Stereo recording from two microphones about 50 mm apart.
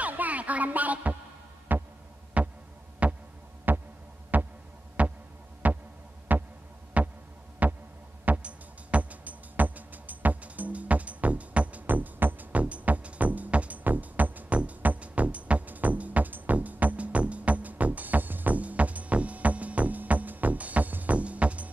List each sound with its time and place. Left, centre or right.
0.0 s music: right
2.4 s heart sounds: right
3.0 s throbbing: right
3.7 s throbbing: right
6.3 s heart sounds: right
7.6 s throbbing: right
8.3 s music: right